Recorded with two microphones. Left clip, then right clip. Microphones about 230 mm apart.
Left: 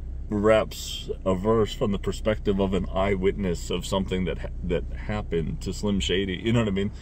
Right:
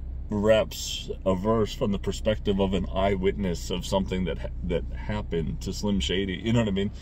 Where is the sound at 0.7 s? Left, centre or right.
Left.